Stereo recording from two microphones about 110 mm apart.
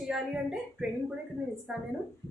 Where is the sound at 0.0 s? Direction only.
5° right (ahead or behind).